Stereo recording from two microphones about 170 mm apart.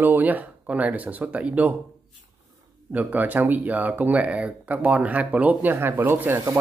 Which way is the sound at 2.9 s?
10° right (ahead or behind).